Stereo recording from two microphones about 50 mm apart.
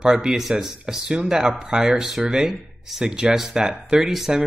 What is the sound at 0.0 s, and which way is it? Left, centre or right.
Speech, centre.